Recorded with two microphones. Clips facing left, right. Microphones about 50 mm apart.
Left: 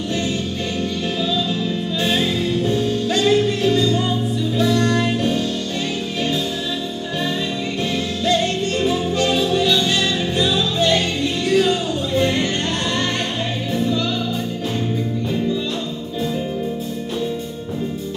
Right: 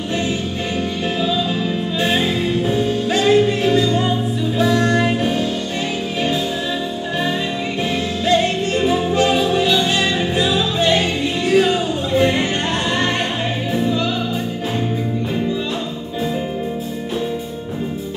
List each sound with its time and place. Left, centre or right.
2.0 s music: centre
8.3 s music: centre